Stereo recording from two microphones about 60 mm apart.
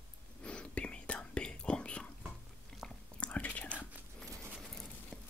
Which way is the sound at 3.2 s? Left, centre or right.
Left.